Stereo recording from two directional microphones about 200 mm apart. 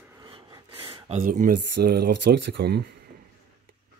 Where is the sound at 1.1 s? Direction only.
40° right (ahead or behind).